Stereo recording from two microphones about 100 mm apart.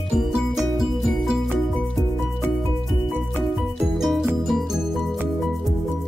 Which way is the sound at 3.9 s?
Centre (ahead or behind).